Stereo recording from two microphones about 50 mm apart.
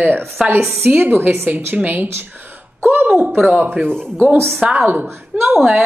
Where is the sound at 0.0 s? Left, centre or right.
Right.